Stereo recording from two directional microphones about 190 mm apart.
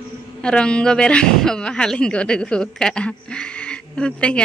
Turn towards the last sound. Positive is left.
turn(degrees=5)  # may be behind; listen again after turning